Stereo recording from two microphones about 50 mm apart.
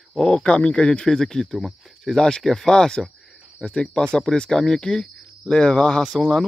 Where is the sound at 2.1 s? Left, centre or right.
Centre.